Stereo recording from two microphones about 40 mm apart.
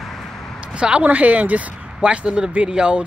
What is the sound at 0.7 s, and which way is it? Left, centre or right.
Speech, right.